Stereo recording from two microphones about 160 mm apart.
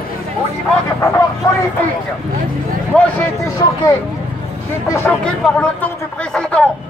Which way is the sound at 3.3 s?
25° left (ahead or behind).